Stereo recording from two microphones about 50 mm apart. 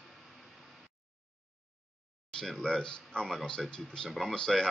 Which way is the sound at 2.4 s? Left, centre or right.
Centre.